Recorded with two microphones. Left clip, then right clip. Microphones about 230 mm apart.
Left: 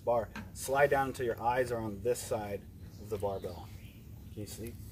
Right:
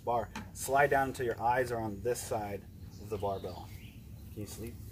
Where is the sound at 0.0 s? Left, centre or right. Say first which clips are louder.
Left 2 dB; centre.